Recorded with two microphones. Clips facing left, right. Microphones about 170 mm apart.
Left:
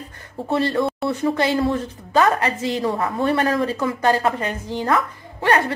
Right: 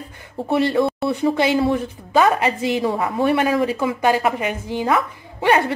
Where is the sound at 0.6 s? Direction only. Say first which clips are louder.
Right 3 dB; 15° right (ahead or behind).